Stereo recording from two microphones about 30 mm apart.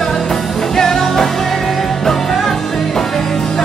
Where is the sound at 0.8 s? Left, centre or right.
Centre.